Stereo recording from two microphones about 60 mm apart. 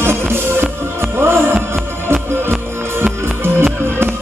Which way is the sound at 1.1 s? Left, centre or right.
Right.